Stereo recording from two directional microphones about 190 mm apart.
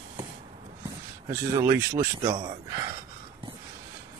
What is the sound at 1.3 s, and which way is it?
Speech, 15° right (ahead or behind).